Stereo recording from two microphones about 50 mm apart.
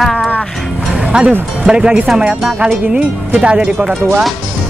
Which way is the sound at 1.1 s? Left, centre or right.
Right.